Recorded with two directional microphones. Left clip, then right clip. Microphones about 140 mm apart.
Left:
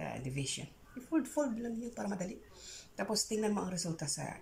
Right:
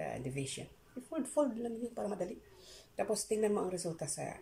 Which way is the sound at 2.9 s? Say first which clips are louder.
Right 1 dB; 20° right (ahead or behind).